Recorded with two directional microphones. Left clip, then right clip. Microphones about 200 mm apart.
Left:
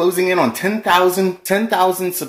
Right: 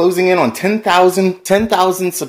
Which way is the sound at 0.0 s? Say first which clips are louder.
Right 3 dB; 35° right (ahead or behind).